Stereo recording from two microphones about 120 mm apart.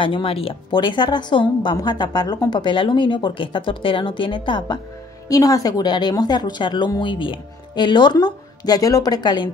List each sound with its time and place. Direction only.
0.0 s a woman's voice: 45° left (ahead or behind)
5.3 s a woman's voice: 30° left (ahead or behind)